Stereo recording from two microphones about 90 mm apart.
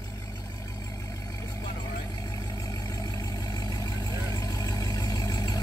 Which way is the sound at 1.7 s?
50° left (ahead or behind).